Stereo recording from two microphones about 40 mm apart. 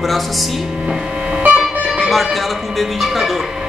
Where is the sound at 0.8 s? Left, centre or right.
Centre.